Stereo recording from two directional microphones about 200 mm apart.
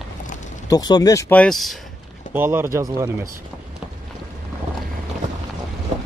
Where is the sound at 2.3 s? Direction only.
10° right (ahead or behind).